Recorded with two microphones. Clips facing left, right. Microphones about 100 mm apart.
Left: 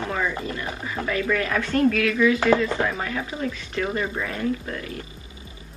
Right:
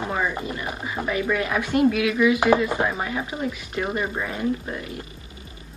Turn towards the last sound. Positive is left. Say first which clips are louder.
# even
turn(degrees=-20)  # may be behind; listen again after turning